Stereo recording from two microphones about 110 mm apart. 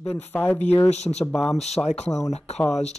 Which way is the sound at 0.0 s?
15° left (ahead or behind).